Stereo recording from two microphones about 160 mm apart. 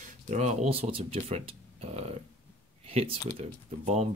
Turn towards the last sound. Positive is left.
turn(degrees=-40)  # may be behind; listen again after turning